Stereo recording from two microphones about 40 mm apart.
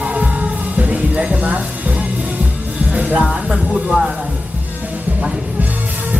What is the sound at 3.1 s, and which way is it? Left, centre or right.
Music, centre.